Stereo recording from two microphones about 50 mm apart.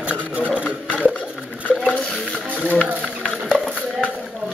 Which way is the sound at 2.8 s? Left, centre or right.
Centre.